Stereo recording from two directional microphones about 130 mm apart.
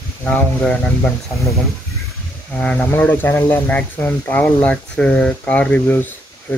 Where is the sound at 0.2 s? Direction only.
5° left (ahead or behind).